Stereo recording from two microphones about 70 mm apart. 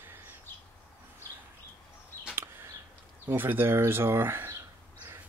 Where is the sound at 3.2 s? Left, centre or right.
Right.